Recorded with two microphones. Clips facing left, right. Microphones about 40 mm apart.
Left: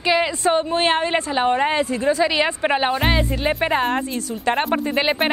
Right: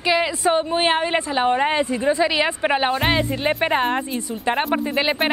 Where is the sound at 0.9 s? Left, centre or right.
Centre.